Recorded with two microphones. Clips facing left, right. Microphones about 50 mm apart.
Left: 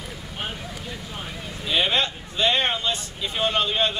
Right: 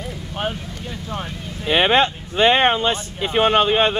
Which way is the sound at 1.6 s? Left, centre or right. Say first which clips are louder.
Right 7 dB; right.